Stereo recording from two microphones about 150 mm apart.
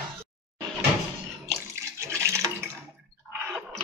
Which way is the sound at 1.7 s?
20° right (ahead or behind).